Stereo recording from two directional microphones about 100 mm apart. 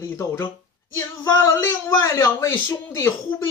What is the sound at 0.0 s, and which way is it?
Speech, 30° left (ahead or behind).